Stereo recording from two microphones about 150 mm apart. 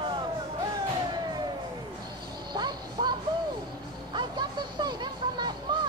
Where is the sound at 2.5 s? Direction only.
30° right (ahead or behind).